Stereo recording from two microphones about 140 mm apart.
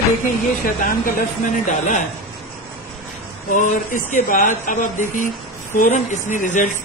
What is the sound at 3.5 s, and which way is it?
Speech, 65° left (ahead or behind).